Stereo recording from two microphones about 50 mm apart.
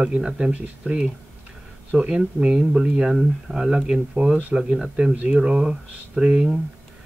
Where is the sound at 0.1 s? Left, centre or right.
Centre.